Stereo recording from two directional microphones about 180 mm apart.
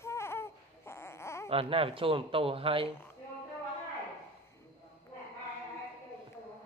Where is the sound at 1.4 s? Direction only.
30° right (ahead or behind).